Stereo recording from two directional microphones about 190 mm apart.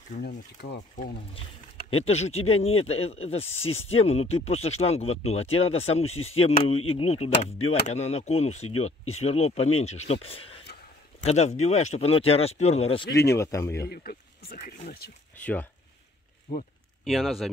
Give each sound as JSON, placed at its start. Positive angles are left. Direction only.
{"t": 0.1, "sound": "speech", "side_deg": 40}
{"t": 0.6, "sound": "speech", "side_deg": 65}
{"t": 1.9, "sound": "speech", "side_deg": 30}
{"t": 13.3, "sound": "a man's voice", "side_deg": 15}
{"t": 13.8, "sound": "speech", "side_deg": 50}
{"t": 15.3, "sound": "speech", "side_deg": 10}
{"t": 16.5, "sound": "speech", "side_deg": 55}
{"t": 17.0, "sound": "speech", "side_deg": 0}